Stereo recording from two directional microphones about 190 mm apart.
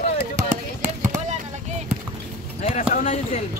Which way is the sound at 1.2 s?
40° right (ahead or behind).